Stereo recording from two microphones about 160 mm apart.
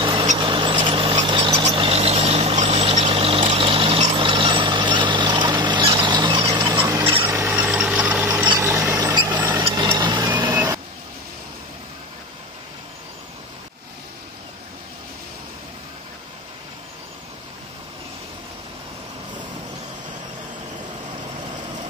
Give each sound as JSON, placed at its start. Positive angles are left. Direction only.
{"t": 0.0, "sound": "mouse", "side_deg": -30}
{"t": 0.4, "sound": "a sound", "side_deg": -30}
{"t": 2.0, "sound": "vehicle", "side_deg": -45}
{"t": 6.9, "sound": "a sound", "side_deg": -15}
{"t": 7.6, "sound": "engine", "side_deg": -5}
{"t": 8.5, "sound": "vehicle", "side_deg": -20}
{"t": 9.6, "sound": "vehicle", "side_deg": -30}
{"t": 9.9, "sound": "a sound", "side_deg": -30}
{"t": 10.3, "sound": "vehicle", "side_deg": -10}